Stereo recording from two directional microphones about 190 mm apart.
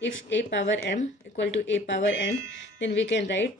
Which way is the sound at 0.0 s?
70° left (ahead or behind).